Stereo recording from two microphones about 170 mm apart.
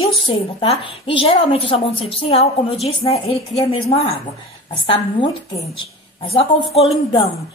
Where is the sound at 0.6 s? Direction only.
30° left (ahead or behind).